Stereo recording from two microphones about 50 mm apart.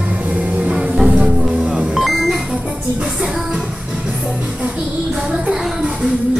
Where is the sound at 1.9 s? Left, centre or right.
Centre.